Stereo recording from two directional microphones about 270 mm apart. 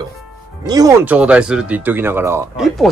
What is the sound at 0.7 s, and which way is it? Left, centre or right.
Speech, centre.